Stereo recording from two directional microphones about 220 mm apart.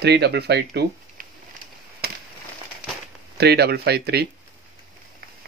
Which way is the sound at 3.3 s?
45° right (ahead or behind).